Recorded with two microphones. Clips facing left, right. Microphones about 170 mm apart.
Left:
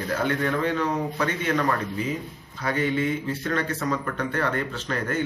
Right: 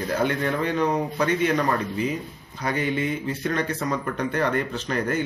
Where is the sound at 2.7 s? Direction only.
15° right (ahead or behind).